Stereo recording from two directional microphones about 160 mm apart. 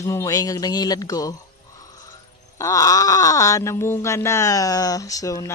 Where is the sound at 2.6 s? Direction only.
20° left (ahead or behind).